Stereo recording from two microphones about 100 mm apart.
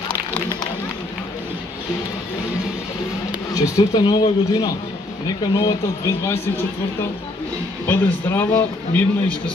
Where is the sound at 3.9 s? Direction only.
50° left (ahead or behind).